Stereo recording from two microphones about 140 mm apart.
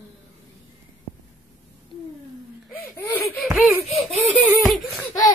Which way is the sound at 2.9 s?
15° left (ahead or behind).